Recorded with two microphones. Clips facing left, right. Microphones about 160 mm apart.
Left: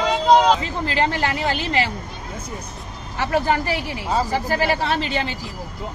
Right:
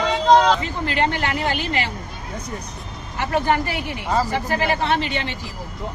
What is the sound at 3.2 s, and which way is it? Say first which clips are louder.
Speech: even; 35° left (ahead or behind).